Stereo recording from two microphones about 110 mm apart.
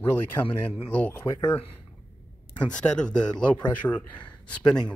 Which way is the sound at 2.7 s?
10° left (ahead or behind).